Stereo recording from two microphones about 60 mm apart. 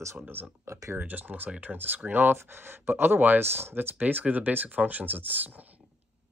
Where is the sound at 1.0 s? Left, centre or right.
Right.